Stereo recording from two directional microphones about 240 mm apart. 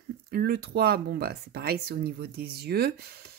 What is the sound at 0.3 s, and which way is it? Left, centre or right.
Speech, right.